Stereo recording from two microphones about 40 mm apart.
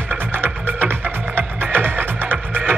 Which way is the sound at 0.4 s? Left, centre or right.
Right.